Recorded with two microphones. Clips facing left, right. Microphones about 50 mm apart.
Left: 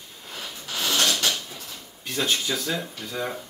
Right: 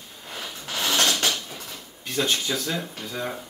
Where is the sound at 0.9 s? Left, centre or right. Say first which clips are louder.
Right 1 dB; right.